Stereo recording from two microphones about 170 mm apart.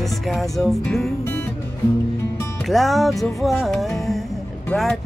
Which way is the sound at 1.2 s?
15° left (ahead or behind).